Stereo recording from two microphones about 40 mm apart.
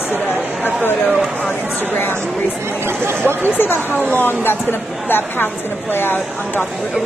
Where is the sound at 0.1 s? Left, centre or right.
Right.